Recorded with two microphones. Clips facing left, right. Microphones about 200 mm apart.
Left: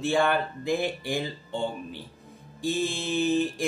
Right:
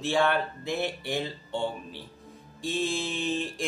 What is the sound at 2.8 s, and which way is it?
Speech, 5° left (ahead or behind).